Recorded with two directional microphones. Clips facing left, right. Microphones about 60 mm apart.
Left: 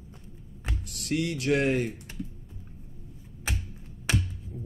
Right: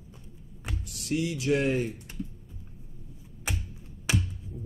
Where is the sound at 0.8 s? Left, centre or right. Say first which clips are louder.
Even; left.